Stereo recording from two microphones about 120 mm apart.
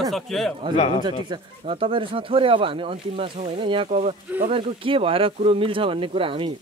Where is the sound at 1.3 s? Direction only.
50° right (ahead or behind).